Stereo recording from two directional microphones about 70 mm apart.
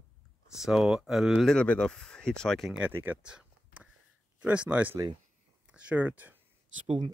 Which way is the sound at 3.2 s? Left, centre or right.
Centre.